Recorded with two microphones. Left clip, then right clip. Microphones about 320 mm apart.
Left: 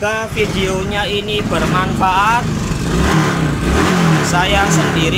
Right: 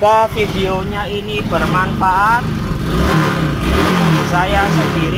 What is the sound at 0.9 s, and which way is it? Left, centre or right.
Speech, centre.